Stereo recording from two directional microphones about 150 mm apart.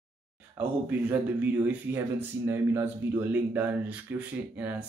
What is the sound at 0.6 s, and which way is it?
Speech, 10° right (ahead or behind).